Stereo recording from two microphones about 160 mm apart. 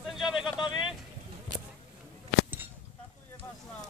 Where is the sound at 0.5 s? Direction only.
30° left (ahead or behind).